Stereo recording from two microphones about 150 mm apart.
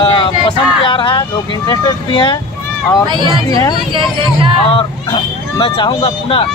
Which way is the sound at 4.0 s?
35° right (ahead or behind).